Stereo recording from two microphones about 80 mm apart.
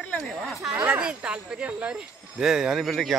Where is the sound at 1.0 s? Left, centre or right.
Centre.